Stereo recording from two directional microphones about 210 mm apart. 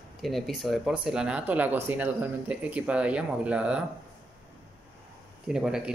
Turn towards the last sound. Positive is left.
turn(degrees=-5)  # may be behind; listen again after turning